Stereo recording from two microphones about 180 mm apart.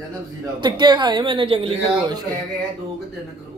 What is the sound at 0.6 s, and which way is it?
A man's voice, 25° right (ahead or behind).